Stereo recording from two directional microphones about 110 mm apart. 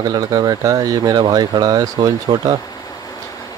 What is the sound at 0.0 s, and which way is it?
Speech, 35° right (ahead or behind).